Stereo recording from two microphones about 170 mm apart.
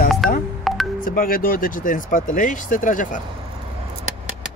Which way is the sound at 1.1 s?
55° left (ahead or behind).